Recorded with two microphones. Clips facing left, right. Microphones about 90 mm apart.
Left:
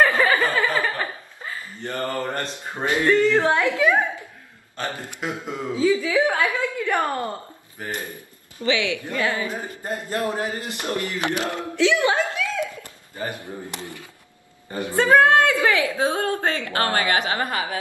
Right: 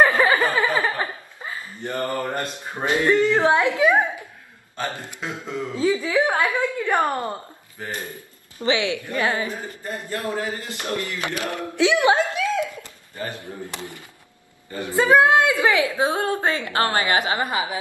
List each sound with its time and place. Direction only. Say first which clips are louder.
0.0 s chuckle: right 1 dB; 20° right (ahead or behind)
2.7 s speech: even; 20° right (ahead or behind)
5.2 s speech: left 1 dB; 15° left (ahead or behind)
5.8 s a woman's voice: left 1 dB; 20° right (ahead or behind)
8.6 s a woman's voice: right 1 dB; 25° right (ahead or behind)
9.6 s speech: left 2 dB; 20° left (ahead or behind)
11.7 s speech: right 2 dB; 20° right (ahead or behind)
13.2 s speech: left 1 dB; 20° left (ahead or behind)
13.7 s a woman's voice: even; 20° right (ahead or behind)
14.7 s a woman's voice: left 1 dB; 20° left (ahead or behind)
15.0 s a woman's voice: even; 15° right (ahead or behind)